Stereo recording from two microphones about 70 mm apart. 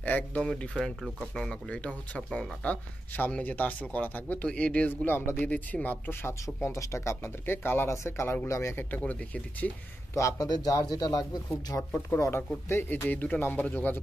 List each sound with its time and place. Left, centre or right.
0.0 s speech: left
4.5 s speech: centre
5.0 s speech: left
5.4 s speech: centre
6.6 s speech: left
7.4 s speech: left
7.9 s speech: left
8.9 s speech: left
10.1 s speech: left
10.5 s speech: left
11.9 s speech: left